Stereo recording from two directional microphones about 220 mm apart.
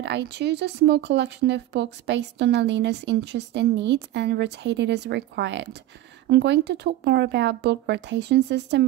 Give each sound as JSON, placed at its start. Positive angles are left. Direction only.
{"t": 0.0, "sound": "speech", "side_deg": -50}